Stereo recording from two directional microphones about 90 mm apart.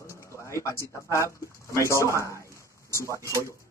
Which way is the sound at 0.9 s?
35° left (ahead or behind).